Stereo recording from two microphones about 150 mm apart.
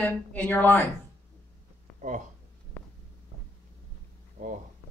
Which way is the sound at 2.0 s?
55° right (ahead or behind).